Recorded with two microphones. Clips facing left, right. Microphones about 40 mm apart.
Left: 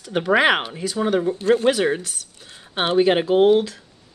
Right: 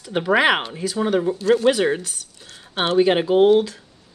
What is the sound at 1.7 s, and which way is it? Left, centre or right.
Speech, centre.